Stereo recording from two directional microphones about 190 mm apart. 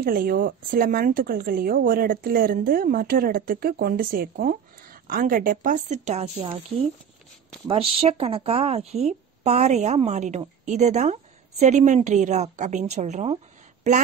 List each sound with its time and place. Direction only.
0.0 s speech: 50° right (ahead or behind); by 6.6 s 30° right (ahead or behind)
8.0 s a woman's voice: 30° right (ahead or behind)